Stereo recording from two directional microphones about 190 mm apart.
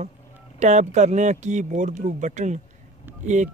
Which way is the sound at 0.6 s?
40° right (ahead or behind).